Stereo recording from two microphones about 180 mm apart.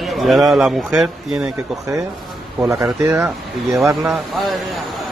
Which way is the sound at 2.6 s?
15° right (ahead or behind).